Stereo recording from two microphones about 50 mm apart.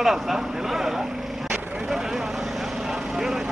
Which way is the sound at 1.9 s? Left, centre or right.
Centre.